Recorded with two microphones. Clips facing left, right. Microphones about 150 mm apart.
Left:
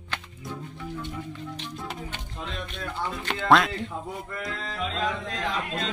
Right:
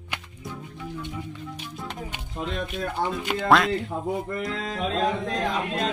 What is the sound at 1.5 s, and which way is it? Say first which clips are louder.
Music: even; centre (ahead or behind).